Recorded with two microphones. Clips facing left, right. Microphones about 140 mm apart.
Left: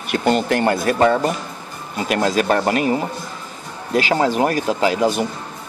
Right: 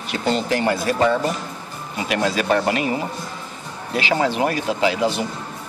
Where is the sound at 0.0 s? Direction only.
55° left (ahead or behind).